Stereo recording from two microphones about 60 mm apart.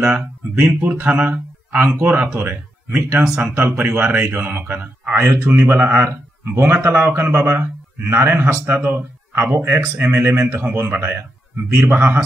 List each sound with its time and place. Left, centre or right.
0.0 s speech: centre
0.6 s a man's voice: right
8.6 s a man's voice: right